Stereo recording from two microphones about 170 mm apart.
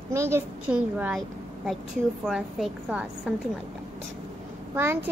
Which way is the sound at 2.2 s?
Centre (ahead or behind).